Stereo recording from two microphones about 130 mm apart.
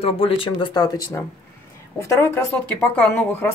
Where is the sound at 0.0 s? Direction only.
45° left (ahead or behind); by 1.2 s 30° left (ahead or behind).